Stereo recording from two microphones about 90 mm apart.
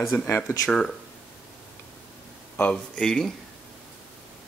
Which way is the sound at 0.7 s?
5° left (ahead or behind).